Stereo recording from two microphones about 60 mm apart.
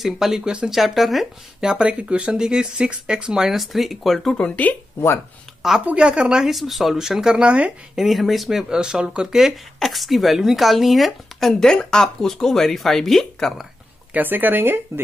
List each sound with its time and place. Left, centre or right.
0.0 s speech: centre
1.7 s speech: centre
4.4 s speech: left
5.9 s speech: centre
6.5 s speech: centre; by 7.7 s right
7.9 s speech: centre
9.4 s speech: centre
14.1 s speech: right